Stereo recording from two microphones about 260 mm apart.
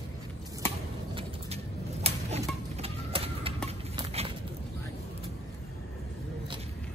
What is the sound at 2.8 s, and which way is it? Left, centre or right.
Music, right.